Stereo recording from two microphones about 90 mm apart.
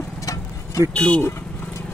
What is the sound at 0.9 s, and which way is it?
Speech, 10° left (ahead or behind).